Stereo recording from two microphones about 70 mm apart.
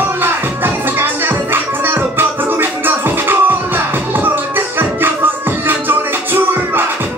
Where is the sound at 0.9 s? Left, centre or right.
Right.